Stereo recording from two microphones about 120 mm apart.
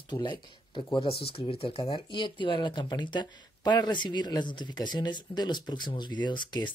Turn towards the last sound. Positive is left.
turn(degrees=40)  # may be behind; listen again after turning